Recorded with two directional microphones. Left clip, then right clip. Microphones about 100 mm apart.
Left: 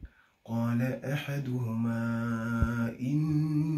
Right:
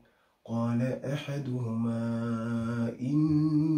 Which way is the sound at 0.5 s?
15° right (ahead or behind).